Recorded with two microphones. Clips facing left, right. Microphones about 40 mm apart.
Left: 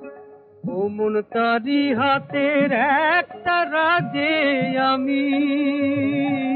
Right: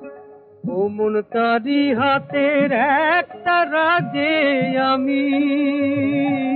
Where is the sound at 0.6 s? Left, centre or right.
Centre.